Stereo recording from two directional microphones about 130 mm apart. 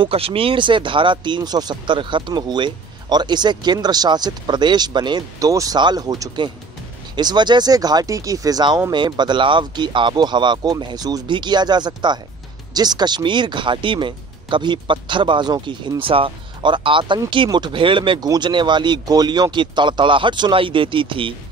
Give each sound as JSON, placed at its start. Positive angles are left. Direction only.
{"t": 0.0, "sound": "speech", "side_deg": -45}